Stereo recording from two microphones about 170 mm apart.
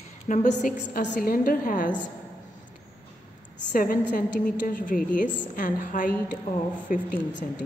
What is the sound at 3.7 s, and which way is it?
A woman's voice, 50° left (ahead or behind).